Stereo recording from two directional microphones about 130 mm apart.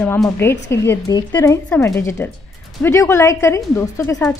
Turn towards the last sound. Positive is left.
turn(degrees=20)  # may be behind; listen again after turning